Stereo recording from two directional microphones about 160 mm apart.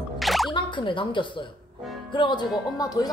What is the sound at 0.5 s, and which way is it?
A woman's voice, 30° left (ahead or behind).